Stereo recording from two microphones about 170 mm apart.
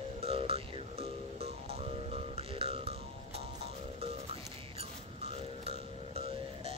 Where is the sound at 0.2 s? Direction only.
35° right (ahead or behind).